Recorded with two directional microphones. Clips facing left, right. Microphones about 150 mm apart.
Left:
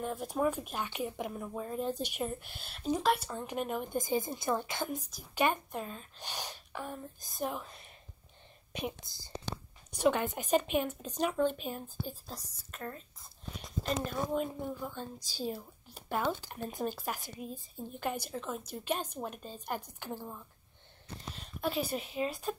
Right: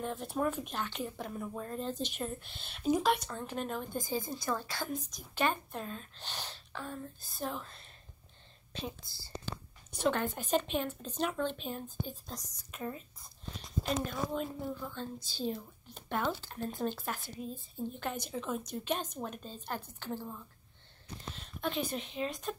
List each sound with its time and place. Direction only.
0.0 s a woman's voice: 10° left (ahead or behind)
3.3 s a woman's voice: 10° left (ahead or behind)
12.7 s speech: 5° right (ahead or behind)
14.1 s a woman's voice: 5° left (ahead or behind)